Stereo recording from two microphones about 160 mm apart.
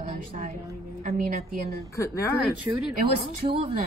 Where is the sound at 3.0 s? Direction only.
60° right (ahead or behind).